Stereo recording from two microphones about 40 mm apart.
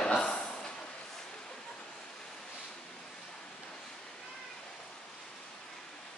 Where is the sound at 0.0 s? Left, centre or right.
Left.